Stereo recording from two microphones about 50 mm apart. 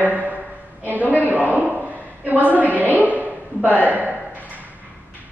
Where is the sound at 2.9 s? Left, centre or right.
Right.